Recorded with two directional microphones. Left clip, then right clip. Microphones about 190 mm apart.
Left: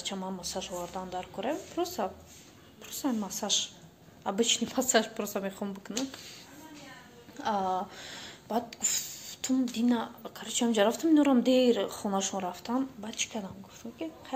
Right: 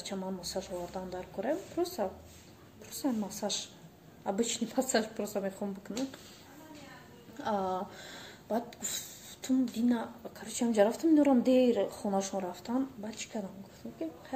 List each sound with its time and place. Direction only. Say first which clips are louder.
0.0 s a woman's voice: left 2 dB; centre (ahead or behind)
7.3 s speech: left 3 dB; 5° right (ahead or behind)